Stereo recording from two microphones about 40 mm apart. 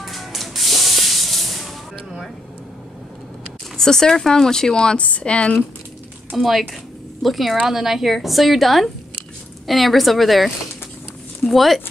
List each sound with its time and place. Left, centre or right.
0.0 s spray: centre
3.7 s speech: centre; by 5.5 s left
6.3 s a woman's voice: centre